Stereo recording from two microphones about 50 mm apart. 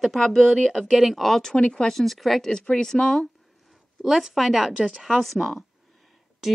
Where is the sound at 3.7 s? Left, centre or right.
Centre.